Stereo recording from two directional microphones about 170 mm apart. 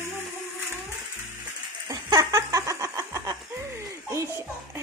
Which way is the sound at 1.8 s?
25° right (ahead or behind).